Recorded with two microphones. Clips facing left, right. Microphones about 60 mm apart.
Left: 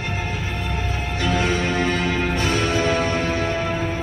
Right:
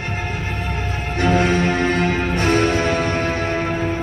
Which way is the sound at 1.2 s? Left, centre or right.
Right.